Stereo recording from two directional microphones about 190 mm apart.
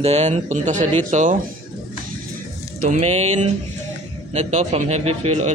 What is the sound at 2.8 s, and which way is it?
A man's voice, 40° right (ahead or behind).